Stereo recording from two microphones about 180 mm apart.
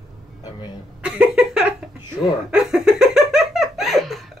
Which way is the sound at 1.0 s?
5° right (ahead or behind).